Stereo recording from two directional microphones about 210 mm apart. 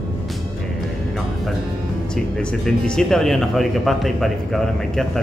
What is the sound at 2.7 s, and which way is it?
Speech, 5° left (ahead or behind).